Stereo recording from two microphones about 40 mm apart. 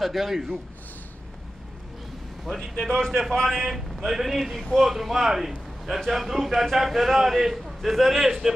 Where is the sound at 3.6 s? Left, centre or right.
Centre.